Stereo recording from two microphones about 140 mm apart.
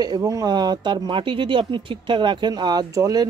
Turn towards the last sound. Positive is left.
turn(degrees=-25)  # may be behind; listen again after turning